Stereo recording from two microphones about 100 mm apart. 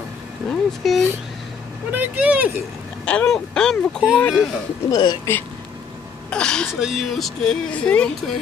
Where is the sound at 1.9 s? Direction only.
15° right (ahead or behind).